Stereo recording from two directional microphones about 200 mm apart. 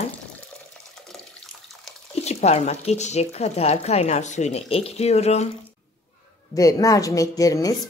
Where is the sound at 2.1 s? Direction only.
35° left (ahead or behind).